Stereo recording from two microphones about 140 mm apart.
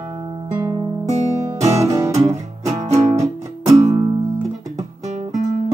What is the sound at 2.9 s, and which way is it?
Music, 50° right (ahead or behind).